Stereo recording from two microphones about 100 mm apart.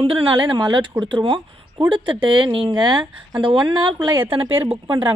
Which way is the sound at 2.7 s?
45° right (ahead or behind).